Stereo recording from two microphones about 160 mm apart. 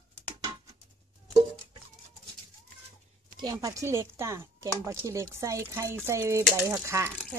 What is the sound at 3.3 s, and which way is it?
Speech, 25° right (ahead or behind).